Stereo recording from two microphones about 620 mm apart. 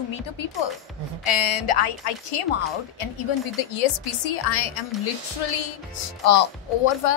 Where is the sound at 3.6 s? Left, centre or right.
Left.